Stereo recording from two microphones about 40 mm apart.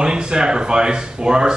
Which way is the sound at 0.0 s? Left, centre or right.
Centre.